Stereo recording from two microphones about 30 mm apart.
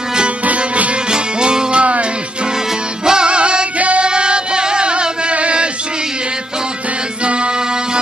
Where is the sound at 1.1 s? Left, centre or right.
Right.